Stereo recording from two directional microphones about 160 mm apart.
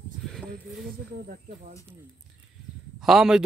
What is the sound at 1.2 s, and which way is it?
Speech, 45° right (ahead or behind).